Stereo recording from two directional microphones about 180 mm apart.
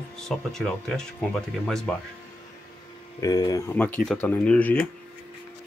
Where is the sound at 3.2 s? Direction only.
20° left (ahead or behind).